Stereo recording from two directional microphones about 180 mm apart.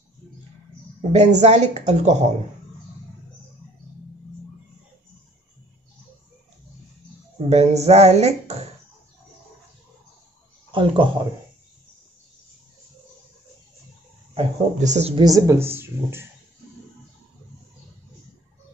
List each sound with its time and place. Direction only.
1.1 s speech: 40° right (ahead or behind)
7.4 s speech: 40° right (ahead or behind)
10.7 s speech: 25° right (ahead or behind)
14.3 s speech: 40° right (ahead or behind)
15.1 s speech: 20° right (ahead or behind)